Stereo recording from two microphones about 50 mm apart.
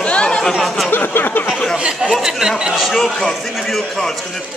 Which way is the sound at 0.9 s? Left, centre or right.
Left.